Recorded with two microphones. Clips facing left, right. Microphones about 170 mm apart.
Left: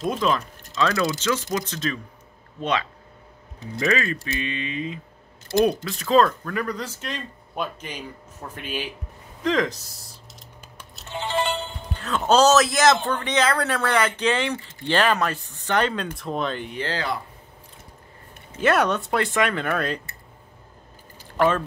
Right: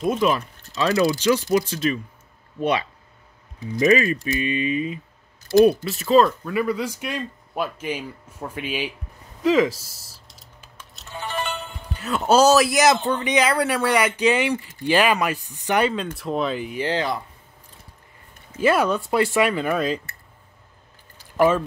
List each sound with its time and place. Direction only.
0.0 s speech: 5° right (ahead or behind)
0.7 s speech: 20° right (ahead or behind)
3.8 s speech: 15° right (ahead or behind)
11.1 s ringtone: 25° left (ahead or behind)
11.8 s music: 10° right (ahead or behind)
12.2 s speech: 10° right (ahead or behind)
16.8 s speech: 20° right (ahead or behind)
18.6 s speech: 5° right (ahead or behind)
21.4 s speech: 10° right (ahead or behind)